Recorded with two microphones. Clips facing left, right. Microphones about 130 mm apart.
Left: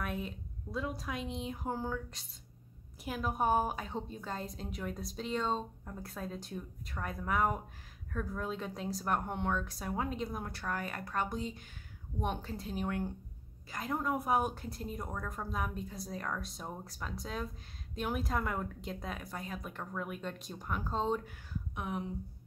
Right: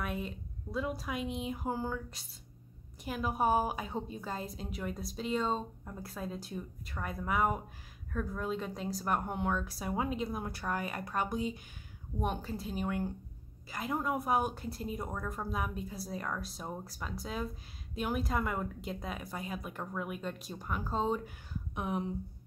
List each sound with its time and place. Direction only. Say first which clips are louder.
0.0 s a woman's voice: right 1 dB; centre (ahead or behind)
21.7 s speech: right 4 dB; 25° right (ahead or behind)